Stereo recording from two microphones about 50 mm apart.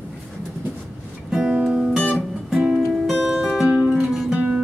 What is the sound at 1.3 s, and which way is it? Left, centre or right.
Music, centre.